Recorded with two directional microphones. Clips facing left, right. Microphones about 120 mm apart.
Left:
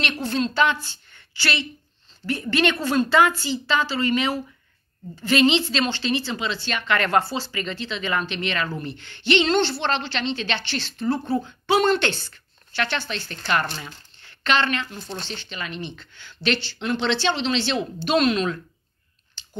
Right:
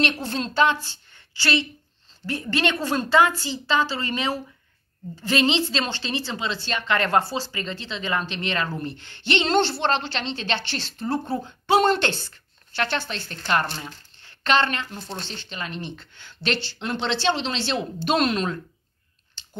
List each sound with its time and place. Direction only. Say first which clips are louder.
0.0 s speech: even; 35° right (ahead or behind)
2.2 s a woman's voice: left 3 dB; 30° right (ahead or behind)
14.5 s a woman's voice: right 1 dB; 40° right (ahead or behind)